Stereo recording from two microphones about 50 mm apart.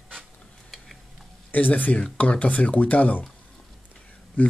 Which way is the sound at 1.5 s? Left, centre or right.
Left.